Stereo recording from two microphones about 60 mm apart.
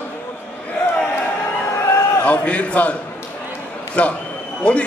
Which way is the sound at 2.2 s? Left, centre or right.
Left.